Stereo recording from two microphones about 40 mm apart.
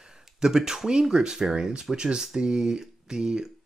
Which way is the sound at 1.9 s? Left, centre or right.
Centre.